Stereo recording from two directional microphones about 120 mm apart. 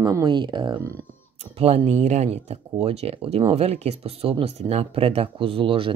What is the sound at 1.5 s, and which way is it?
Speech, 60° right (ahead or behind).